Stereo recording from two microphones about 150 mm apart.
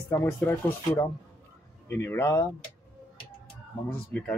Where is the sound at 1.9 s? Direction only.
15° left (ahead or behind).